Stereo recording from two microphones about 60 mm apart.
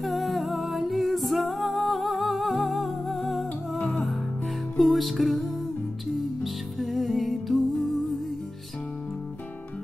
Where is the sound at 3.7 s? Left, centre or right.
Centre.